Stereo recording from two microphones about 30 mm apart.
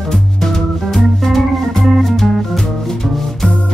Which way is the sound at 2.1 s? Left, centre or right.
Centre.